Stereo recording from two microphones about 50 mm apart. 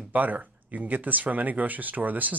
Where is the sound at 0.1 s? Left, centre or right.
Right.